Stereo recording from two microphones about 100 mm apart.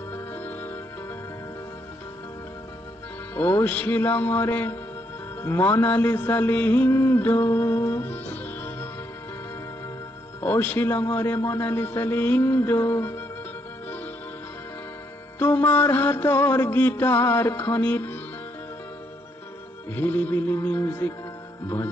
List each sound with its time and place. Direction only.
0.1 s music: 20° left (ahead or behind)
3.3 s a man's voice: 25° left (ahead or behind)
5.4 s mantra: 25° left (ahead or behind)
10.4 s a man's voice: 20° left (ahead or behind)
15.3 s a man's voice: 20° left (ahead or behind)
19.9 s a man's voice: 20° left (ahead or behind)